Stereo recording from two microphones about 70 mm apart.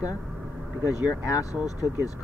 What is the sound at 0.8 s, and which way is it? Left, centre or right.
Speech, left.